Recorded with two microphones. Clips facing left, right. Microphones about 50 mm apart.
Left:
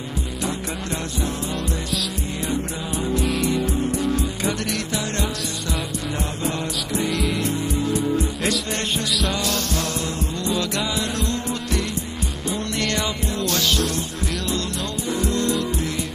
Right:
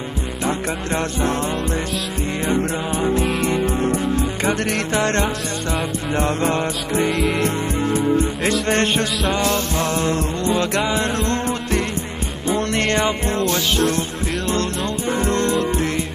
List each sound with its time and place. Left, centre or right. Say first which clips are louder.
2.4 s music: right 6 dB; right
6.1 s music: right 9 dB; right
13.5 s music: even; right
15.0 s music: right 3 dB; right